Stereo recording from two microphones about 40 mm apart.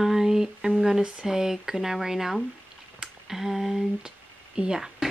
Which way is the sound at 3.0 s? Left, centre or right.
Centre.